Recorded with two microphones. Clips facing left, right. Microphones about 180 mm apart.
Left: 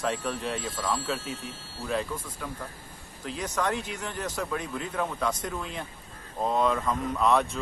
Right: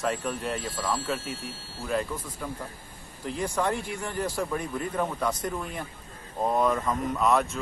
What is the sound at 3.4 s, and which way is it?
Speech, 10° right (ahead or behind).